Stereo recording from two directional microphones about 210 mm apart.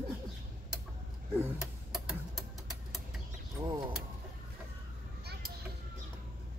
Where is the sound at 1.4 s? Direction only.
Centre (ahead or behind).